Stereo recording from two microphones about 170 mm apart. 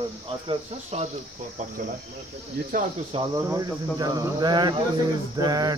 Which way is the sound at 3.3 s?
20° right (ahead or behind).